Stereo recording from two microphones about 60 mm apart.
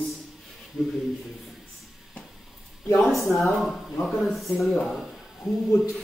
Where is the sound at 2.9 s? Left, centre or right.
Centre.